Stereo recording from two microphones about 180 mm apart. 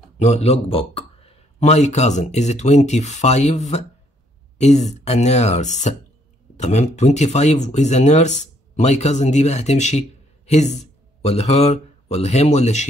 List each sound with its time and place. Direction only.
0.2 s speech: 35° left (ahead or behind)